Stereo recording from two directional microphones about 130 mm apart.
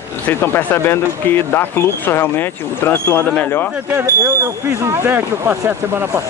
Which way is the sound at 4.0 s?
20° right (ahead or behind).